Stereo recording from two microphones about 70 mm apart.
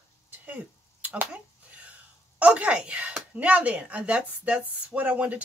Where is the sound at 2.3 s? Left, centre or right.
Centre.